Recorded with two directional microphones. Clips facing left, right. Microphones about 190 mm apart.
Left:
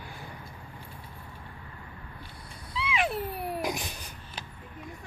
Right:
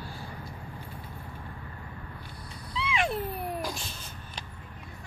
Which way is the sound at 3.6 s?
15° left (ahead or behind).